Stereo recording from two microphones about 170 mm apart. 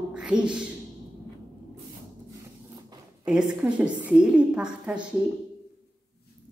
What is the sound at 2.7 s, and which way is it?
Zipper, 25° right (ahead or behind).